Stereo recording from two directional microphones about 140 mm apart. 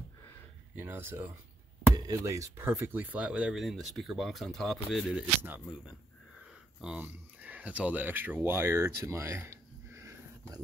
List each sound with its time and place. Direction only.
0.7 s speech: 15° right (ahead or behind)